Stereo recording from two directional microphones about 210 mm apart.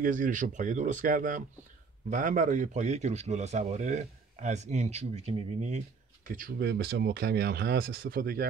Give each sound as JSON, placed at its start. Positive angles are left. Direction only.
{"t": 0.0, "sound": "a man's voice", "side_deg": -40}